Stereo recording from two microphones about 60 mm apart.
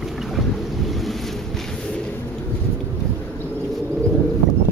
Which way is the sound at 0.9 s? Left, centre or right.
Centre.